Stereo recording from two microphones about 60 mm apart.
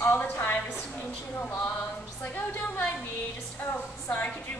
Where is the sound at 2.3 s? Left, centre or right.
Left.